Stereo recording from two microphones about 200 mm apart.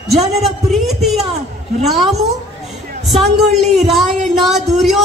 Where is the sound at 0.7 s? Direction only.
Centre (ahead or behind).